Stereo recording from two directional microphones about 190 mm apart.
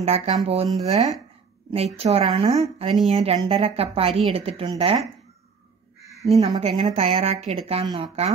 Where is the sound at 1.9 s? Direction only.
30° right (ahead or behind).